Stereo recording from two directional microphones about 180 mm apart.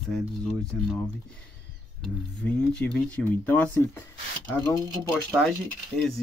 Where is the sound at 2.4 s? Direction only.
10° left (ahead or behind).